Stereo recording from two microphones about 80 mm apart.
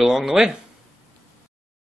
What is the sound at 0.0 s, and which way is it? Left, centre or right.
Speech, centre.